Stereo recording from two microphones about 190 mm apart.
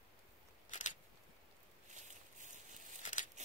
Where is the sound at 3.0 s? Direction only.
40° left (ahead or behind).